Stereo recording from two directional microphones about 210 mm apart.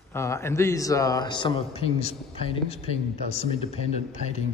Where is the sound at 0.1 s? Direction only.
10° left (ahead or behind); by 2.1 s 30° left (ahead or behind).